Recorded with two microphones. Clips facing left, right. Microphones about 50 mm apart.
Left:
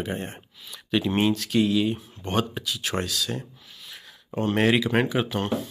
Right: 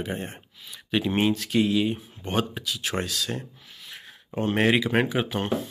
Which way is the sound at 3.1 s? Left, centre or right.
Right.